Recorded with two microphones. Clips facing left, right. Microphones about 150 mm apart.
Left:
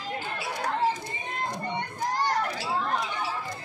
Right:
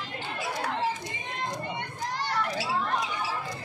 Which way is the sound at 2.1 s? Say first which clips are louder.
Left 5 dB; 45° left (ahead or behind).